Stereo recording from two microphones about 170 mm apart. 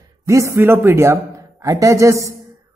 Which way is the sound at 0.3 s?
15° right (ahead or behind).